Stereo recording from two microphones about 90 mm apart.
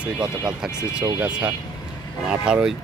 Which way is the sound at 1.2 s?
20° right (ahead or behind).